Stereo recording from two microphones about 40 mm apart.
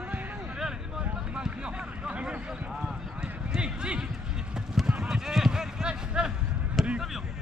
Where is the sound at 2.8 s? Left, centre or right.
Centre.